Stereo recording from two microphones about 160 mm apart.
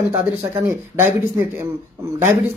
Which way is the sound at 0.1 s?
15° right (ahead or behind).